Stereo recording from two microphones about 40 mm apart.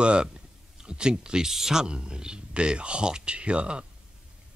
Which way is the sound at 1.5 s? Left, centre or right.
Centre.